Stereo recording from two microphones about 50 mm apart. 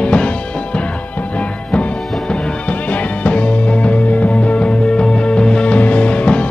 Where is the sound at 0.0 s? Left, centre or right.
Left.